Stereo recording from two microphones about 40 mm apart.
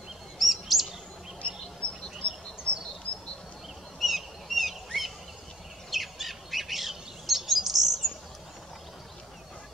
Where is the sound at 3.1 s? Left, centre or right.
Left.